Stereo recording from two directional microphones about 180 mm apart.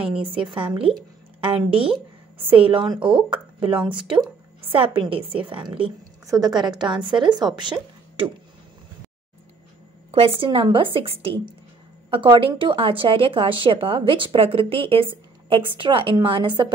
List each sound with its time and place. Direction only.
0.3 s a woman's voice: 30° right (ahead or behind)
10.1 s a woman's voice: 30° right (ahead or behind)